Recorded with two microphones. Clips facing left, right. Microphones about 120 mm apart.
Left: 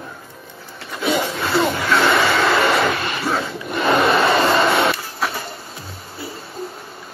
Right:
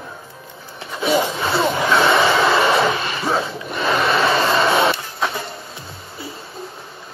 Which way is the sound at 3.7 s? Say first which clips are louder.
Left 3 dB; 25° left (ahead or behind).